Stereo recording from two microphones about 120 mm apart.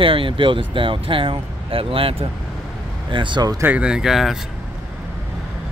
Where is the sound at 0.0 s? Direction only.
45° right (ahead or behind).